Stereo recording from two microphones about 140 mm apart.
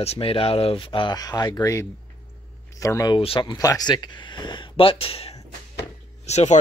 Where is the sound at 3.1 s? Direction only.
40° left (ahead or behind).